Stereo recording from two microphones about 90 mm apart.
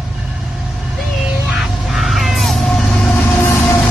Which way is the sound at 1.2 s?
10° right (ahead or behind).